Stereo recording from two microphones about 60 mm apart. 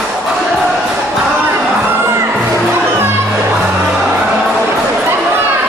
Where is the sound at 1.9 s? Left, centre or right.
Right.